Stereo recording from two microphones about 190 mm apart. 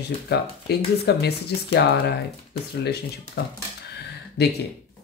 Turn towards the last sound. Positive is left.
turn(degrees=60)  # may be behind; listen again after turning